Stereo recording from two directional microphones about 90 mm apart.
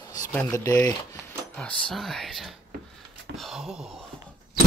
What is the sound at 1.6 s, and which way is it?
Speech, 10° left (ahead or behind).